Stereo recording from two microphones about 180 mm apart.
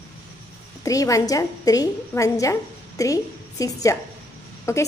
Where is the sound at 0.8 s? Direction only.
20° left (ahead or behind).